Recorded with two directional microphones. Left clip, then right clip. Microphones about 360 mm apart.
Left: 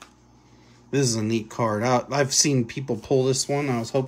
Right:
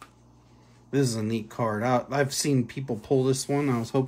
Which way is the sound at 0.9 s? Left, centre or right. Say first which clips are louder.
Left 3 dB; centre.